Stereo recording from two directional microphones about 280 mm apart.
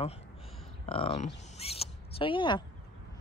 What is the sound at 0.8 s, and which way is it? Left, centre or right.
Speech, centre.